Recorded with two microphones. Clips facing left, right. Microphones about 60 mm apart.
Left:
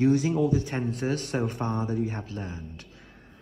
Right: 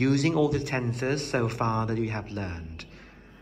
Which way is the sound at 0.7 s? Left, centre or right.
Right.